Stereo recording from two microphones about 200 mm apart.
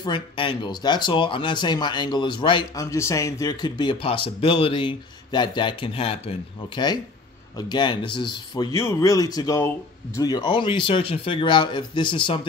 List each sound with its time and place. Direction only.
0.0 s speech: 25° left (ahead or behind)